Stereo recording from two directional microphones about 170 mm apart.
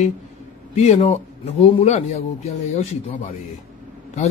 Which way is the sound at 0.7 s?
40° left (ahead or behind).